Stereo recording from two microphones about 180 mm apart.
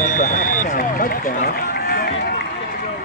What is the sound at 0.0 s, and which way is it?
Run, 45° left (ahead or behind).